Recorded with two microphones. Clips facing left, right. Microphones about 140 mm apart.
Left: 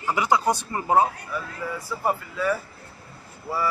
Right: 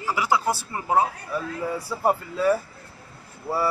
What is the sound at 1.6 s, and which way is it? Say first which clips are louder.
Speech: right 3 dB; 30° right (ahead or behind).